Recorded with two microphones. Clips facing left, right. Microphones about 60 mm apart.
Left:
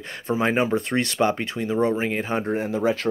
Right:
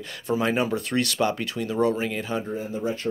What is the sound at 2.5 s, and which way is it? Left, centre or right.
Speech, left.